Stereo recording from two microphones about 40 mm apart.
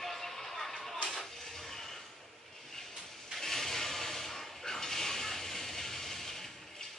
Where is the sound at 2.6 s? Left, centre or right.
Centre.